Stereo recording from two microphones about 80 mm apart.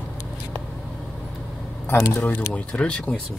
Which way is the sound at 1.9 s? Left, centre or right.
Left.